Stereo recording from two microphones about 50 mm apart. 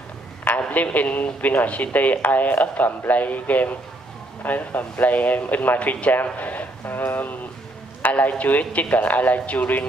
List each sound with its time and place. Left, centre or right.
0.5 s a man's voice: left